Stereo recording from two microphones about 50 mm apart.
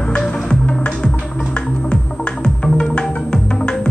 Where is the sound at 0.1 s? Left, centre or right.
Centre.